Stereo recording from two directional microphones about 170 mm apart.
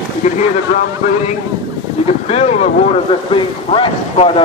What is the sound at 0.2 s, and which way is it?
Speech, 40° left (ahead or behind).